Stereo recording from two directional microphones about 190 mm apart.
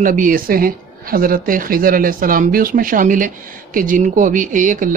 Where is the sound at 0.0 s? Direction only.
45° right (ahead or behind).